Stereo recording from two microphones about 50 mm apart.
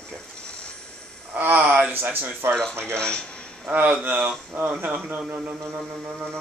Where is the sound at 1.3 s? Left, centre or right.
Right.